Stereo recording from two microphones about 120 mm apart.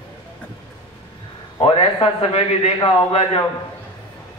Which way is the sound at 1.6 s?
55° left (ahead or behind).